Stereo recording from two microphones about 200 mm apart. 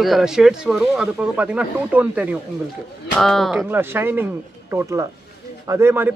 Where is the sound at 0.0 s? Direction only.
Centre (ahead or behind).